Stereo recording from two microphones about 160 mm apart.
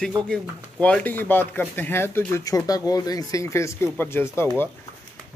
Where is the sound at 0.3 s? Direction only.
5° left (ahead or behind).